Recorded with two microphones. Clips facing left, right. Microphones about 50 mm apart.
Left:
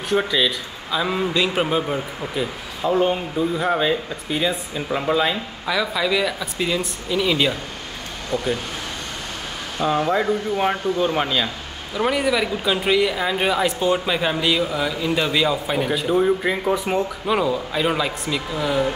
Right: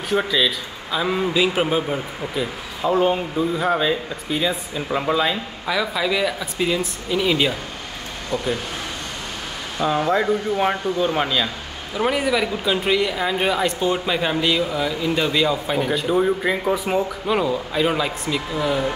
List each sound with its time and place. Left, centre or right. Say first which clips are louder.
0.1 s speech: even; centre
5.7 s speech: even; centre
8.3 s speech: left 1 dB; left
9.8 s speech: even; centre